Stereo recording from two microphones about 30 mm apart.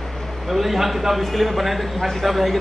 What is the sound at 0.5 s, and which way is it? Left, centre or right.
A man's voice, centre.